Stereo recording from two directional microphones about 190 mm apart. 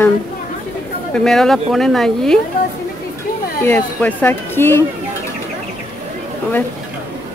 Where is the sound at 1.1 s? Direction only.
5° left (ahead or behind).